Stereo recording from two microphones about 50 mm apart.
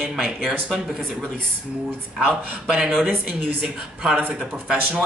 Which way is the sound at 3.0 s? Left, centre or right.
Centre.